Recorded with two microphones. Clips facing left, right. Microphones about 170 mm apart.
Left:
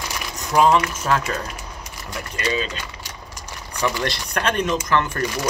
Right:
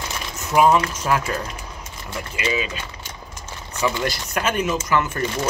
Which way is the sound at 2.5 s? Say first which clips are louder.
Even; 10° right (ahead or behind).